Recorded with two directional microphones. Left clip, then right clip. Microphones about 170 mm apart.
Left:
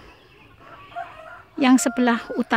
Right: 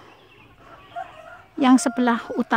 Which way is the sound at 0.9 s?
65° right (ahead or behind).